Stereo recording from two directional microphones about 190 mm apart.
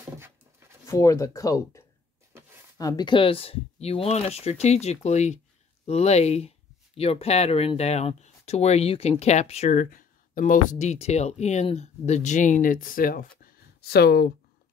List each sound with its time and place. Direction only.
0.8 s speech: 15° left (ahead or behind)
2.8 s speech: 20° left (ahead or behind); by 14.3 s 60° left (ahead or behind)